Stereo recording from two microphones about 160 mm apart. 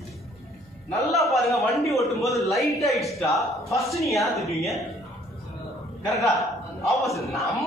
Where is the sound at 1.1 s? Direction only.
Centre (ahead or behind).